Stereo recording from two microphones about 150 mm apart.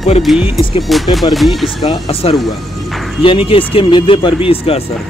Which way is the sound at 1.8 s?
35° left (ahead or behind).